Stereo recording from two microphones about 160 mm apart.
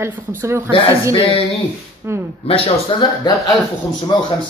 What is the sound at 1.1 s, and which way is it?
Speech, 35° left (ahead or behind).